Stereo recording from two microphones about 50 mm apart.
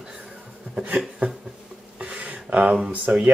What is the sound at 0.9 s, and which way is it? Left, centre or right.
Speech, centre.